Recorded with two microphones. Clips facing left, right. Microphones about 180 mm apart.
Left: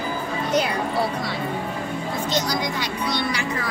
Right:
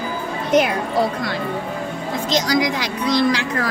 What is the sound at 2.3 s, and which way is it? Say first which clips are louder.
Speech: right 7 dB; 90° right.